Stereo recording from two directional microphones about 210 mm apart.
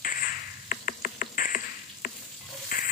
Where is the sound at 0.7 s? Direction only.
40° left (ahead or behind).